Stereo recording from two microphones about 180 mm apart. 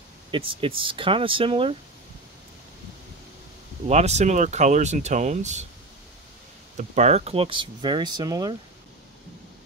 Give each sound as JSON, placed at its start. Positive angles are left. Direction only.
{"t": 0.3, "sound": "speech", "side_deg": -30}
{"t": 3.8, "sound": "speech", "side_deg": -35}
{"t": 6.8, "sound": "speech", "side_deg": -40}